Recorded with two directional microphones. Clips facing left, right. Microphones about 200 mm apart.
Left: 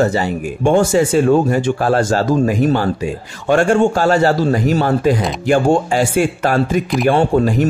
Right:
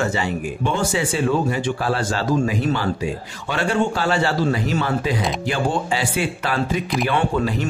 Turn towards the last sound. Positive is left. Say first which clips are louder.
# left 7 dB
turn(degrees=45)  # may be behind; listen again after turning